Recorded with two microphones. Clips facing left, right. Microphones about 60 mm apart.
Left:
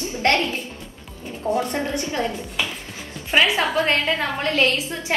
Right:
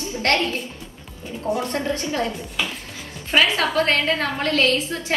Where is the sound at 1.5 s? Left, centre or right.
Left.